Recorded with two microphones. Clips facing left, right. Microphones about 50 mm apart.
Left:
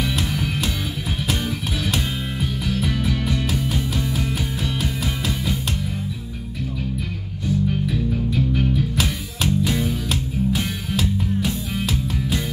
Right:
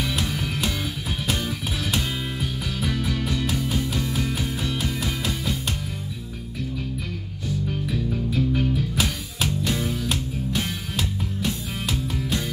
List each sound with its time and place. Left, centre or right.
0.0 s music: centre
2.9 s music: centre
8.3 s music: centre